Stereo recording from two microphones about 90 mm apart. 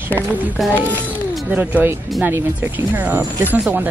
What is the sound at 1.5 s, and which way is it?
Speech, 20° right (ahead or behind).